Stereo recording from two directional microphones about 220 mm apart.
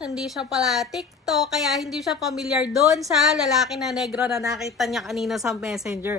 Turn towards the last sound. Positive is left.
turn(degrees=0)  # may be behind; listen again after turning